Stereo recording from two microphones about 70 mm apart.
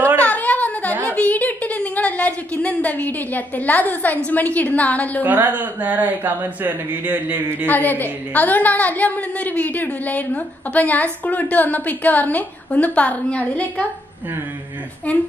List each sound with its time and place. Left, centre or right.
0.2 s a sound: left
5.2 s speech: right
7.6 s a woman's voice: left
15.1 s a woman's voice: centre